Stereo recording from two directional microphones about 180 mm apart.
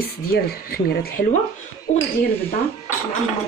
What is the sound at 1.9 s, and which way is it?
Speech, 40° left (ahead or behind).